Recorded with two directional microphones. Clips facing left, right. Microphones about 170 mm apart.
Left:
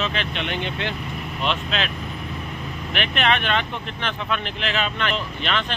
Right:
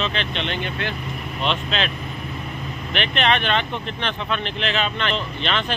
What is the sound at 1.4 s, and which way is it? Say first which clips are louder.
Speech: right 1 dB; 5° left (ahead or behind).